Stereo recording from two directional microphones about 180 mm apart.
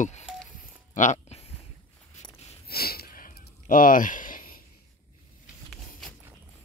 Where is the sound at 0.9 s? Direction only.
40° left (ahead or behind).